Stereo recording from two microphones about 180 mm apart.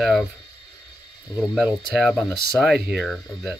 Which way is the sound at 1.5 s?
Centre (ahead or behind).